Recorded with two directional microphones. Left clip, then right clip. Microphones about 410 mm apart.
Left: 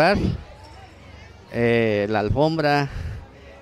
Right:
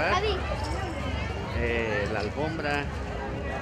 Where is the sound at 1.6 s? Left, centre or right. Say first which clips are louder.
Left 9 dB; left.